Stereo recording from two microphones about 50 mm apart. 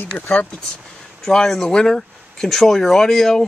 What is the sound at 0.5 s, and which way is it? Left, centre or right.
Speech, centre.